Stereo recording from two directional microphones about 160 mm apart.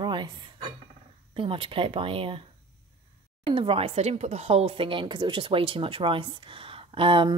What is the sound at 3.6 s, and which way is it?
Speech, 35° right (ahead or behind).